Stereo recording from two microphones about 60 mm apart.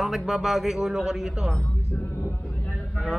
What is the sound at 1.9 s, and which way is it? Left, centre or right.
Music, left.